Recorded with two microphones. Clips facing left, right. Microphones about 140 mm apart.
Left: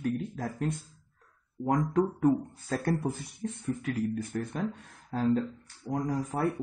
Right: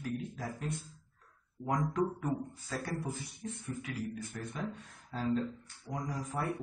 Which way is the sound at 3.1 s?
65° left (ahead or behind).